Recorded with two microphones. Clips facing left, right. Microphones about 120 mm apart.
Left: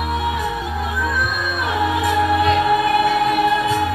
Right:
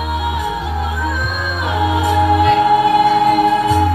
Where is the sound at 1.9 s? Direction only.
25° right (ahead or behind).